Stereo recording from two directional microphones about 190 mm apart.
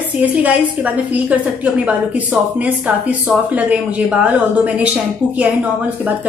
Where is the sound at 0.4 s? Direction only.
10° right (ahead or behind).